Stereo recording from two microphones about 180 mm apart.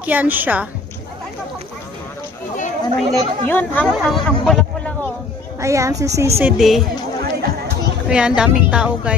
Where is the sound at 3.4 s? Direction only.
10° left (ahead or behind).